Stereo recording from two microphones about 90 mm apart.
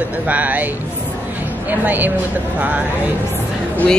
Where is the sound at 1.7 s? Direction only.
20° right (ahead or behind).